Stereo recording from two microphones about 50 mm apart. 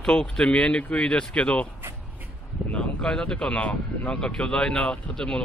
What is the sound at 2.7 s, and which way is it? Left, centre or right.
Speech, centre.